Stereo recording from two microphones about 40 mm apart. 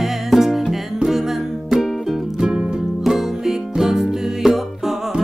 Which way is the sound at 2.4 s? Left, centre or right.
Centre.